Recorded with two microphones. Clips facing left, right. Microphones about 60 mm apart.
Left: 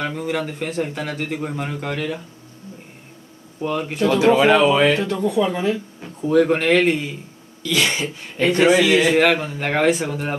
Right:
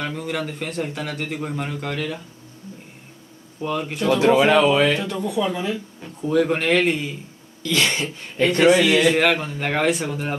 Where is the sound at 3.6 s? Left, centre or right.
Centre.